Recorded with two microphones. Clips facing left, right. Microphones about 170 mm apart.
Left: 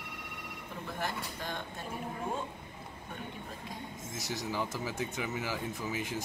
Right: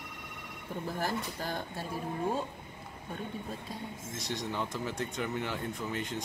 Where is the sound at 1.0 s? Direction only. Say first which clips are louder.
Right 2 dB; 35° right (ahead or behind).